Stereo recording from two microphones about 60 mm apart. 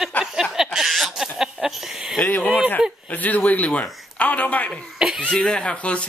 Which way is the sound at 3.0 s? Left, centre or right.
Left.